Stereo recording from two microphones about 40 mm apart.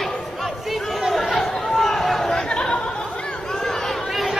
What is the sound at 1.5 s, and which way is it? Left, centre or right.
Chatter, centre.